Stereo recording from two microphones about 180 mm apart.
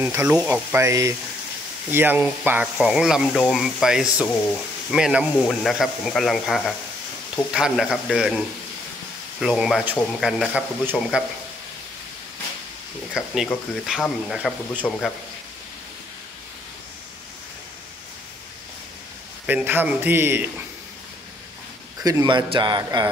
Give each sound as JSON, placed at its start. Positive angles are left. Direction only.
{"t": 0.0, "sound": "speech", "side_deg": -10}
{"t": 9.4, "sound": "speech", "side_deg": 0}
{"t": 13.1, "sound": "speech", "side_deg": 0}
{"t": 19.4, "sound": "speech", "side_deg": -10}
{"t": 22.0, "sound": "speech", "side_deg": -20}